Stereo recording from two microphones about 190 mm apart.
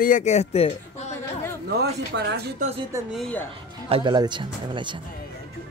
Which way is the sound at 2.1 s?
65° right (ahead or behind).